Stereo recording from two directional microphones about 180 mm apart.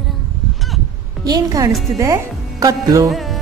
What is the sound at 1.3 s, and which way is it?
A woman's voice, 20° right (ahead or behind).